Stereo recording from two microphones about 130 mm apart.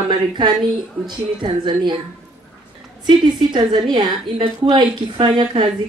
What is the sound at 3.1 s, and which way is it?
A woman's voice, 35° right (ahead or behind).